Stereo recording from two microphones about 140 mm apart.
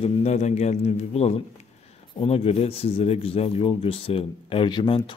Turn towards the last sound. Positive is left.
turn(degrees=35)  # may be behind; listen again after turning